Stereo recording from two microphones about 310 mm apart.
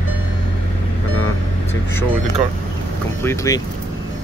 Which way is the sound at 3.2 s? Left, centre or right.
Centre.